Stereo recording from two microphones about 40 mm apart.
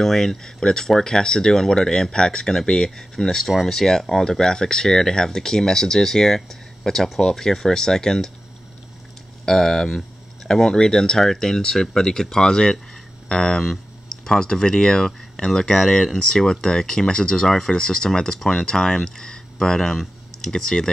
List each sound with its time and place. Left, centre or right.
0.0 s speech: centre
9.5 s speech: centre